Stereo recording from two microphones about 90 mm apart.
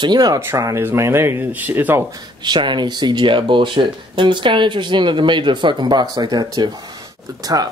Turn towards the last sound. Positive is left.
turn(degrees=-45)  # may be behind; listen again after turning